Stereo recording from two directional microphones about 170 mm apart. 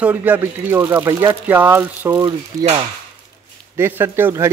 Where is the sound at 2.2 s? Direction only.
30° right (ahead or behind).